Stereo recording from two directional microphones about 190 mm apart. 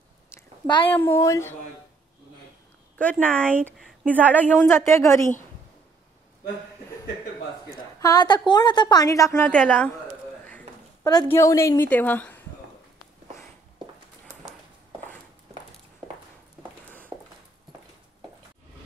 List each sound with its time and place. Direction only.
0.3 s a sound: 10° left (ahead or behind)
0.7 s speech: 25° left (ahead or behind)
0.9 s a woman's voice: 15° left (ahead or behind)
3.0 s a woman's voice: 5° left (ahead or behind)
7.7 s a woman's voice: 20° left (ahead or behind)
11.2 s a woman's voice: 15° left (ahead or behind)
17.1 s a sound: 15° right (ahead or behind)